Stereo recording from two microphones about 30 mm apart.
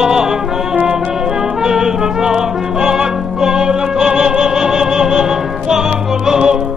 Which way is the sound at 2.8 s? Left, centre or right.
Right.